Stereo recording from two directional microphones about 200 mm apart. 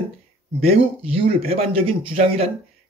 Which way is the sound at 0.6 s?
30° right (ahead or behind).